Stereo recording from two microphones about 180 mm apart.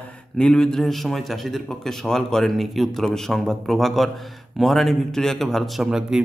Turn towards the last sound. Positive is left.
turn(degrees=-5)  # may be behind; listen again after turning